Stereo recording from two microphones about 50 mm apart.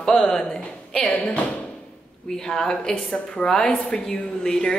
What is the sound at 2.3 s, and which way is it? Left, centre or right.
Speech, centre.